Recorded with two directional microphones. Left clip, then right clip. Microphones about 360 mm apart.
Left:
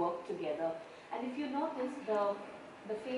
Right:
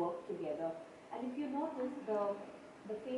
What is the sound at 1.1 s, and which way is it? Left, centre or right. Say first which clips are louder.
A woman's voice: left 3 dB; centre.